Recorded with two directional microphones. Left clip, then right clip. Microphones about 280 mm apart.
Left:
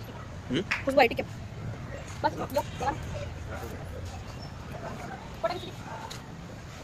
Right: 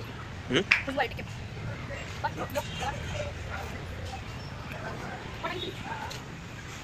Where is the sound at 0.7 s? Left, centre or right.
Left.